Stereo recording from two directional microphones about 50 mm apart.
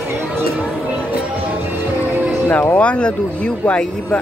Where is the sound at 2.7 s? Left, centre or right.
Left.